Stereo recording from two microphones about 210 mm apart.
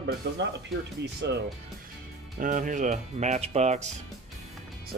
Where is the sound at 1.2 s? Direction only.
55° right (ahead or behind).